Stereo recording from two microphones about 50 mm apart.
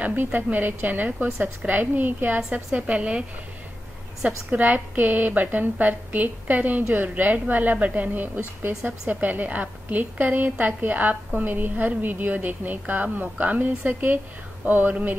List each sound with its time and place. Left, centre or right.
0.0 s a woman's voice: right
2.9 s a woman's voice: right
4.5 s a woman's voice: right